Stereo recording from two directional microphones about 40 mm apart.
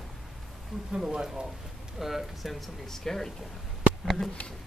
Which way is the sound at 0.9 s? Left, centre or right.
Centre.